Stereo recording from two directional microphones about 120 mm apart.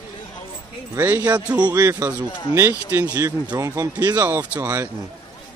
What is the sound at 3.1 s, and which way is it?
Speech, 30° right (ahead or behind).